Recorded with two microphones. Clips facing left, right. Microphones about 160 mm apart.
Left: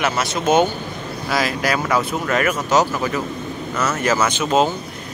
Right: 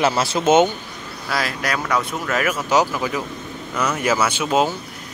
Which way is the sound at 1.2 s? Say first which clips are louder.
Left 3 dB; centre (ahead or behind).